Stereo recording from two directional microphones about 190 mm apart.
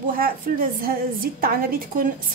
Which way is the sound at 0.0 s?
50° right (ahead or behind).